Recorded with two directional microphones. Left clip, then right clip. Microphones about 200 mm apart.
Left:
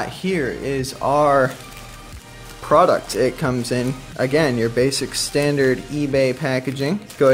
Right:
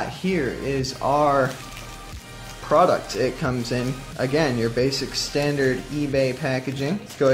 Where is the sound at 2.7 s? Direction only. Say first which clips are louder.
Left 3 dB; 25° left (ahead or behind).